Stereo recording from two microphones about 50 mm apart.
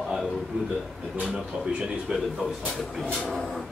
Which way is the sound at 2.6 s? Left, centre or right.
Centre.